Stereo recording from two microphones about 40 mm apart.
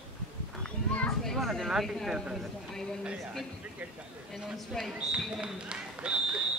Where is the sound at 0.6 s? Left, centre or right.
Left.